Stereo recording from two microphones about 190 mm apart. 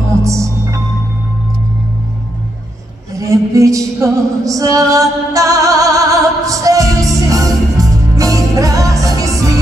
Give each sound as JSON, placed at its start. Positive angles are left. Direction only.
{"t": 0.2, "sound": "music", "side_deg": -15}
{"t": 3.2, "sound": "music", "side_deg": -15}